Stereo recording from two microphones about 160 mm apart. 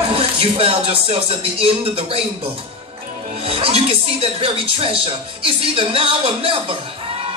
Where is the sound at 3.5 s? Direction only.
35° right (ahead or behind).